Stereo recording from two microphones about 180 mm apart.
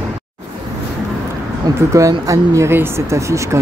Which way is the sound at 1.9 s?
20° right (ahead or behind).